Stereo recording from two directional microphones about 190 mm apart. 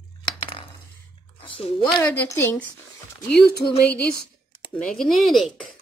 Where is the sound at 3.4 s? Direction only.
55° left (ahead or behind).